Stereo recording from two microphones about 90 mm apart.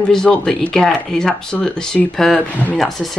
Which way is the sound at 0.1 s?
5° left (ahead or behind).